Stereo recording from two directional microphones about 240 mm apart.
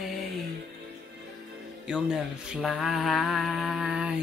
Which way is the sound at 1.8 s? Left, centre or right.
Centre.